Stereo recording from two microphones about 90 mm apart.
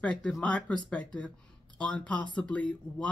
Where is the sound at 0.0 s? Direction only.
10° left (ahead or behind).